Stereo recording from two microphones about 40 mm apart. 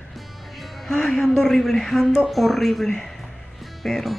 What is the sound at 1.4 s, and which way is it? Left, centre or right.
Speech, centre.